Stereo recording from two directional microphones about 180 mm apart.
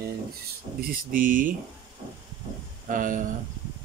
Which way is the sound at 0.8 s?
50° right (ahead or behind).